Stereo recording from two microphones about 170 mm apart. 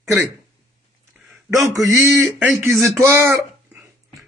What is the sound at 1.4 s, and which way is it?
Speech, 20° right (ahead or behind).